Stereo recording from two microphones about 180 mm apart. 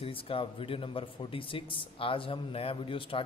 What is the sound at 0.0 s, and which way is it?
Speech, 30° left (ahead or behind).